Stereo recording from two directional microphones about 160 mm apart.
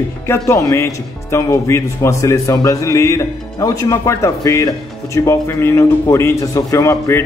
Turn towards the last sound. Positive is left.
turn(degrees=20)  # may be behind; listen again after turning